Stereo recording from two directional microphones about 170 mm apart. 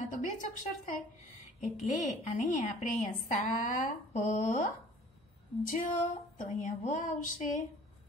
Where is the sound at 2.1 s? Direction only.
45° left (ahead or behind).